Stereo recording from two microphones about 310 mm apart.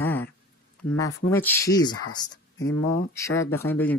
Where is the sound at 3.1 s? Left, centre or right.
Centre.